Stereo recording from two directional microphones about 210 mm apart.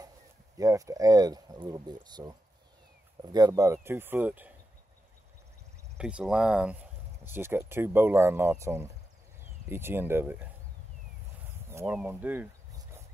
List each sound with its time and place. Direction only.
0.6 s speech: 15° right (ahead or behind)
5.9 s speech: 5° right (ahead or behind)
11.8 s speech: 5° right (ahead or behind)